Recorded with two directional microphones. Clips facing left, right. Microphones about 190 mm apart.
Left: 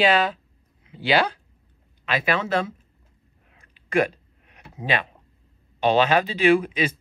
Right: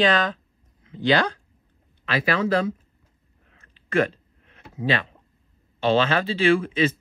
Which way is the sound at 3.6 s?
15° left (ahead or behind).